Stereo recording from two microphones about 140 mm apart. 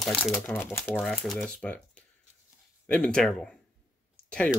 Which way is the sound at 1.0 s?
Centre (ahead or behind).